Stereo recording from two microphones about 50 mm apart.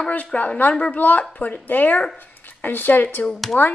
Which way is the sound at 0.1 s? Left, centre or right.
Left.